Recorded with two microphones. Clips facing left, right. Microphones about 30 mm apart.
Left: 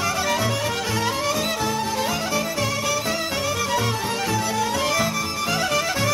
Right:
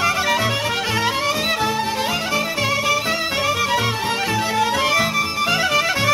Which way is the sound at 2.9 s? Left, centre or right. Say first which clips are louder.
Right 4 dB; right.